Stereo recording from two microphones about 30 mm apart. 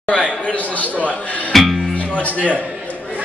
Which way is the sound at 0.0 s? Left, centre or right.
Left.